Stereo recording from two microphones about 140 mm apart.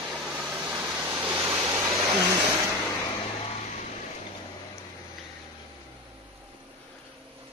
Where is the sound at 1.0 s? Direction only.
20° right (ahead or behind).